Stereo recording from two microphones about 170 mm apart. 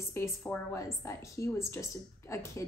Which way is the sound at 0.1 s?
15° left (ahead or behind).